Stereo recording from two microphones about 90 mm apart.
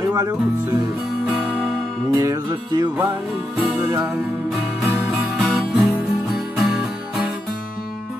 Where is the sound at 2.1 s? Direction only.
40° right (ahead or behind).